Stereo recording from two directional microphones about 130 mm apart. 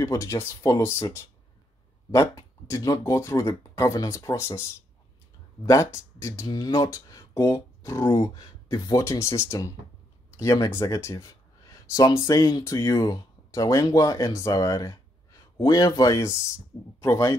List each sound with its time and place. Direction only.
0.0 s speech: 25° left (ahead or behind)
5.7 s speech: 25° left (ahead or behind)